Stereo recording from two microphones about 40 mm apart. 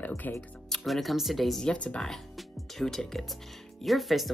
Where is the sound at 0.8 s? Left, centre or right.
Centre.